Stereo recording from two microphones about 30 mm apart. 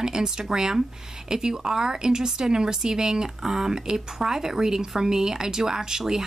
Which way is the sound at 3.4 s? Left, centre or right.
Centre.